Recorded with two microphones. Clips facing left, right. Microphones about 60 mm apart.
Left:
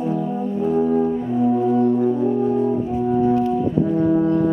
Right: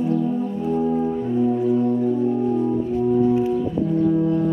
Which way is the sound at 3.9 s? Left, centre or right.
Left.